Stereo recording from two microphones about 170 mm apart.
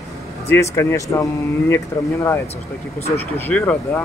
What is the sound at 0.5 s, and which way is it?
Speech, 15° left (ahead or behind).